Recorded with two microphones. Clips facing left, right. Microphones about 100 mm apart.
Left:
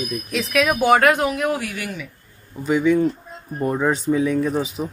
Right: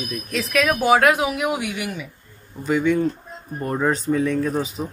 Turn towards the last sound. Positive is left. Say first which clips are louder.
# left 1 dB
turn(degrees=0)  # may be behind; listen again after turning